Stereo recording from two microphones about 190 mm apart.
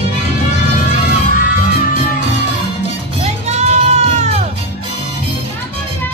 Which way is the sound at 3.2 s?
35° right (ahead or behind).